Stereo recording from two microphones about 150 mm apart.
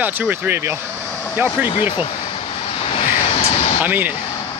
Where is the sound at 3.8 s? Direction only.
10° right (ahead or behind).